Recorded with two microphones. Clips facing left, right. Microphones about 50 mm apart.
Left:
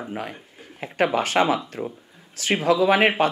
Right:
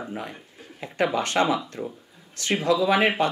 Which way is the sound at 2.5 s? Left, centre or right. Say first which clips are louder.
Left 3 dB; left.